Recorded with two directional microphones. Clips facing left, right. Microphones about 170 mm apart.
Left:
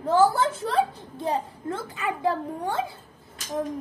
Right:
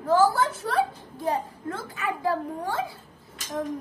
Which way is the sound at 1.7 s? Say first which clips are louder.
Left 2 dB; 20° left (ahead or behind).